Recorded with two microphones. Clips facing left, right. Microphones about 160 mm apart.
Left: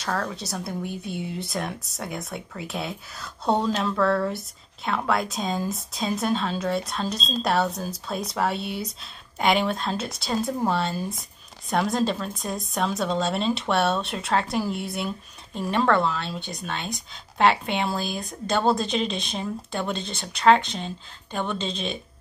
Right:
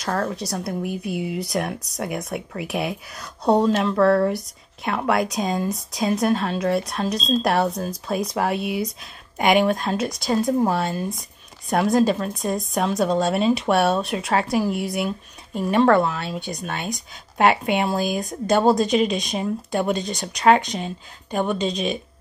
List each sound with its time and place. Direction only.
0.0 s speech: 5° right (ahead or behind)
17.9 s speech: 50° right (ahead or behind)
18.5 s speech: 10° right (ahead or behind)